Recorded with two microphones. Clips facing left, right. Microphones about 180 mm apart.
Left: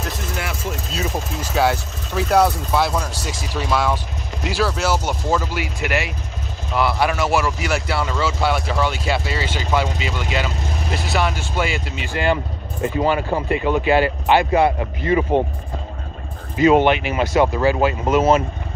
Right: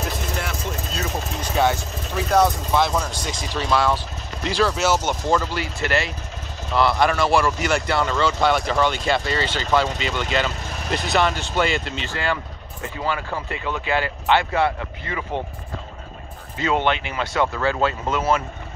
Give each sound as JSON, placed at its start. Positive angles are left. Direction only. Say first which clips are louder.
{"t": 1.4, "sound": "speech", "louder": "left 1 dB", "side_deg": 5}
{"t": 16.5, "sound": "speech", "louder": "left 8 dB", "side_deg": 20}